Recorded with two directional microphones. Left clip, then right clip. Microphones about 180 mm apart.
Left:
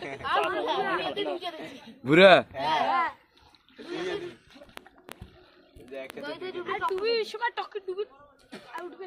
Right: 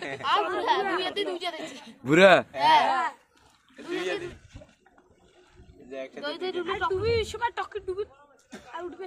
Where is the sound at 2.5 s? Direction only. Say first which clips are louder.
Right 7 dB; 30° right (ahead or behind).